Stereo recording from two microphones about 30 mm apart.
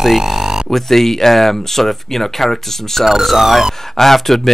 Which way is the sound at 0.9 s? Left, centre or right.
Centre.